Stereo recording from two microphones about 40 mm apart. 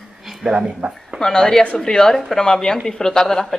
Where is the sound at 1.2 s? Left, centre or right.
Centre.